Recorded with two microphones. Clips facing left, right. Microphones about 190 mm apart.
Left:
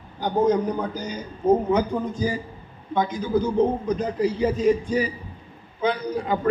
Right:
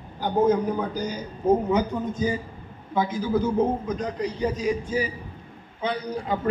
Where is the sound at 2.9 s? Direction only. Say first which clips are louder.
Left 1 dB; 5° right (ahead or behind).